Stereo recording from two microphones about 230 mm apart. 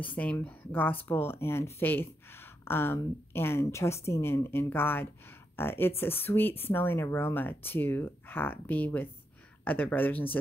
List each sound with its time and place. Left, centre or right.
0.0 s speech: centre